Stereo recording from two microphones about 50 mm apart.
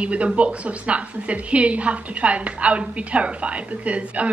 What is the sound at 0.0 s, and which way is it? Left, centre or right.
A woman's voice, right.